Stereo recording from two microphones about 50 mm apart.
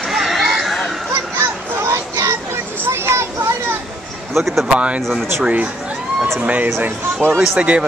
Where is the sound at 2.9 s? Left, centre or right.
Right.